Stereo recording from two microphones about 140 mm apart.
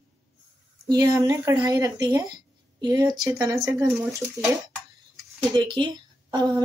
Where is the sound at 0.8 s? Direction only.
25° right (ahead or behind).